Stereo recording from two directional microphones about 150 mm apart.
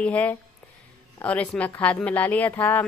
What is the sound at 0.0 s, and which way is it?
Speech, 10° left (ahead or behind).